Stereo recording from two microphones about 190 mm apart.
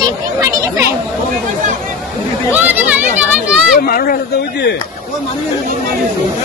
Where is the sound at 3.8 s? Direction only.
50° left (ahead or behind).